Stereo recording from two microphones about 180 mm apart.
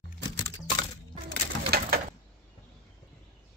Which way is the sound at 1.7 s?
60° right (ahead or behind).